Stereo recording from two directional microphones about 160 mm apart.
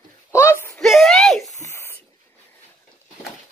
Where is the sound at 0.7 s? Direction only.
Centre (ahead or behind).